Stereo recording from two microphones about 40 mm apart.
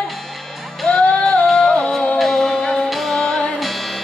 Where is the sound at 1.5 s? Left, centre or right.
Centre.